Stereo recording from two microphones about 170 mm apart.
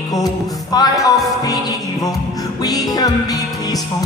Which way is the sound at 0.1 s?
20° left (ahead or behind).